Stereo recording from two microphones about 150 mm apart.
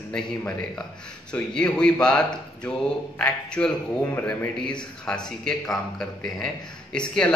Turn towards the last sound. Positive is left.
turn(degrees=5)  # may be behind; listen again after turning